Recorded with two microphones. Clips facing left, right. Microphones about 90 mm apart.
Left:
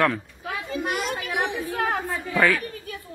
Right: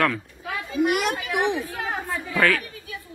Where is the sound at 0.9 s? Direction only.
70° right (ahead or behind).